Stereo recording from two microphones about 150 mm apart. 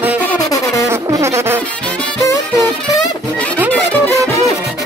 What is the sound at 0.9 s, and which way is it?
Insect, 20° right (ahead or behind).